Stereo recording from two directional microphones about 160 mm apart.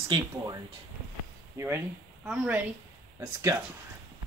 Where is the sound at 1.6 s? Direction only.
15° right (ahead or behind).